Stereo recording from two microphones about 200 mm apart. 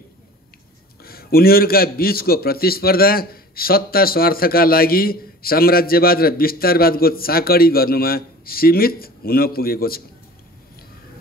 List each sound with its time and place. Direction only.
1.0 s a man's voice: 50° left (ahead or behind)